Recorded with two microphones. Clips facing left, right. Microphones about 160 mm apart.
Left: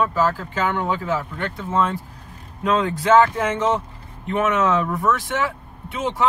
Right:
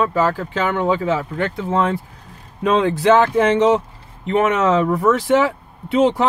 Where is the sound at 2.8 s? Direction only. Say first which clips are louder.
Even; 70° right (ahead or behind).